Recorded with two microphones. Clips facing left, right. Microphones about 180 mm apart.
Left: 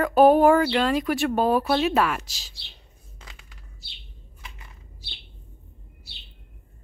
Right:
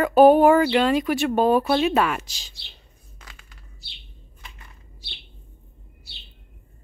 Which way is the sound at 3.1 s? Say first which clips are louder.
Even; 20° left (ahead or behind).